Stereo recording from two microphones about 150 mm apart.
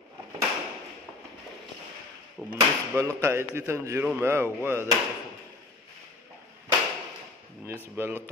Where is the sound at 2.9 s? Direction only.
15° right (ahead or behind).